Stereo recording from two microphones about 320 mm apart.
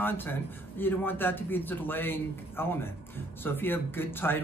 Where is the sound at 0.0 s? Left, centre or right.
Centre.